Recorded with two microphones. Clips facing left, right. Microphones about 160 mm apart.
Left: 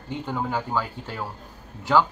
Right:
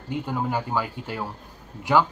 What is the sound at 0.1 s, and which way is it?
Speech, 10° right (ahead or behind).